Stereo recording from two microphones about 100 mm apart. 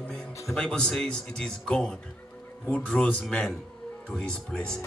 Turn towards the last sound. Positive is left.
turn(degrees=10)  # may be behind; listen again after turning